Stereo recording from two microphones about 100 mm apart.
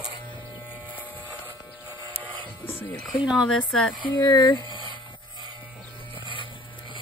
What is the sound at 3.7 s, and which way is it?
Speech, 5° left (ahead or behind).